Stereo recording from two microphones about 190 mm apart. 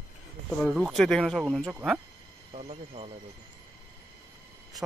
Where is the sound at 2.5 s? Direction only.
35° right (ahead or behind).